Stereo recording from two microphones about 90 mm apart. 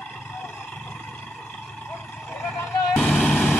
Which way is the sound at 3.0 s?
5° left (ahead or behind).